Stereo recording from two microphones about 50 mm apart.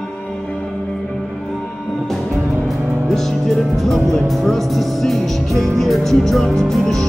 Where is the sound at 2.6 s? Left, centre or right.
Centre.